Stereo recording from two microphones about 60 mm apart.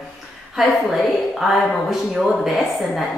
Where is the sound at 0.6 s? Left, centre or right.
Centre.